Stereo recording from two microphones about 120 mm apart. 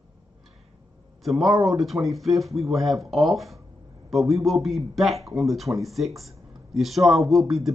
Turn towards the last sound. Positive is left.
turn(degrees=0)  # may be behind; listen again after turning